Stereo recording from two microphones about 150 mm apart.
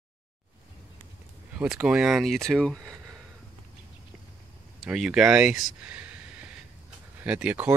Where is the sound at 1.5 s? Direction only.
5° right (ahead or behind).